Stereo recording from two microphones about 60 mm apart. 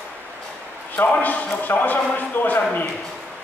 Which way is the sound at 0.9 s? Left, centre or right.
Left.